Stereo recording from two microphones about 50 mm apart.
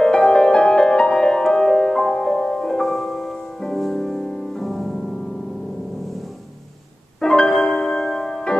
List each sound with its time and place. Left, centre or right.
0.0 s music: centre
7.2 s music: centre
7.4 s music: centre